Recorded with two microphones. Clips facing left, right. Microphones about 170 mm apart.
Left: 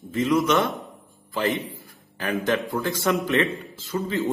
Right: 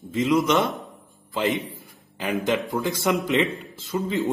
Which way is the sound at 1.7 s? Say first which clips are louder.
Right 1 dB; 20° right (ahead or behind).